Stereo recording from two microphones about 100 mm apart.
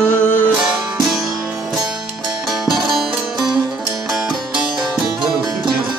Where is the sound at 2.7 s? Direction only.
Centre (ahead or behind).